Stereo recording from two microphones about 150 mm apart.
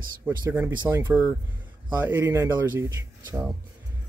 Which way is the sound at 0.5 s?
15° right (ahead or behind).